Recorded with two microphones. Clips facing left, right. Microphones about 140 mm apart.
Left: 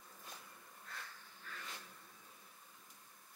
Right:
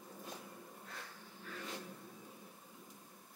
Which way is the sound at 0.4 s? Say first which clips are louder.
Right 7 dB; 25° right (ahead or behind).